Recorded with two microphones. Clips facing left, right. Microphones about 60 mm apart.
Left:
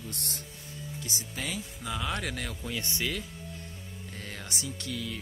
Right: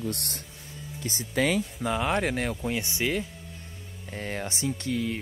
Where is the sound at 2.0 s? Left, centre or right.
Right.